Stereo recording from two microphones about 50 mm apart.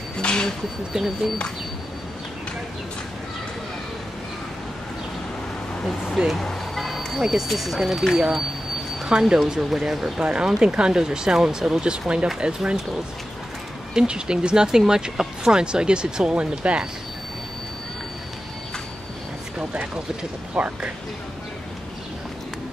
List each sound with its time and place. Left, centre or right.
0.2 s a sound: centre
0.9 s speech: centre
6.1 s speech: centre
6.4 s music: centre
7.2 s speech: centre
13.9 s speech: centre
20.5 s speech: right